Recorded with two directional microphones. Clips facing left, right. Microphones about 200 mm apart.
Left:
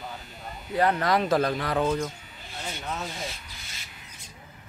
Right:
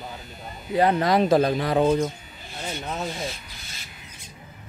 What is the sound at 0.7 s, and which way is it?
Speech, 20° right (ahead or behind).